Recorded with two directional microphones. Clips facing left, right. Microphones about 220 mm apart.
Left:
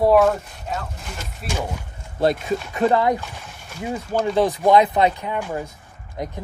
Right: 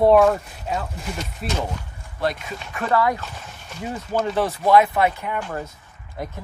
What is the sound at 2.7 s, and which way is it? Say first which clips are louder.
Speech: left 2 dB; 25° left (ahead or behind).